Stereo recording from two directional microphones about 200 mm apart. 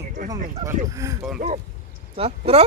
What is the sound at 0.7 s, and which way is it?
Speech, 15° right (ahead or behind).